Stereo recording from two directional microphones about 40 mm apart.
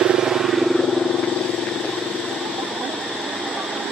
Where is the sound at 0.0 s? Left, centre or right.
Centre.